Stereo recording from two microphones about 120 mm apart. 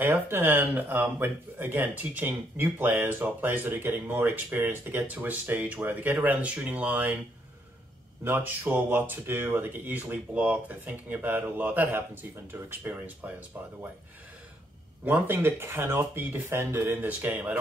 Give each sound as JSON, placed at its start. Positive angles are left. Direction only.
{"t": 0.0, "sound": "speech", "side_deg": -15}
{"t": 8.2, "sound": "speech", "side_deg": -15}
{"t": 15.0, "sound": "speech", "side_deg": -15}